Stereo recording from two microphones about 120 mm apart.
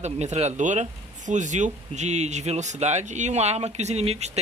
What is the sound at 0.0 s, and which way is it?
Speech, 70° right (ahead or behind).